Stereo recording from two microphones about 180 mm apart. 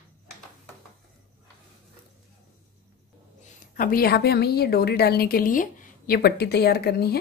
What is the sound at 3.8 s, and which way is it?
A woman's voice, 55° left (ahead or behind).